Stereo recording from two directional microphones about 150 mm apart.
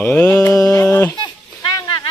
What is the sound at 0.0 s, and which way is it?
Mantra, 10° left (ahead or behind).